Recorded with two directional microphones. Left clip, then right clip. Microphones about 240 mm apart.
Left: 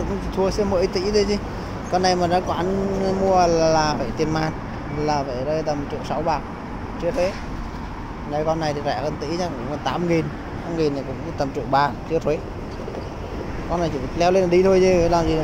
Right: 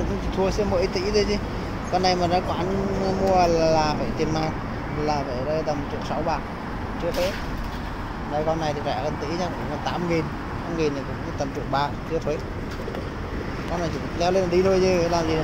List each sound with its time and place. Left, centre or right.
0.4 s speech: left
8.5 s speech: left
11.3 s speech: left
13.7 s speech: left